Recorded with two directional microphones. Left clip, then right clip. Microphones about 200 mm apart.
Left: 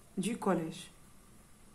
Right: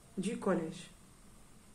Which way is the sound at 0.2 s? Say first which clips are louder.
Left 1 dB; 40° left (ahead or behind).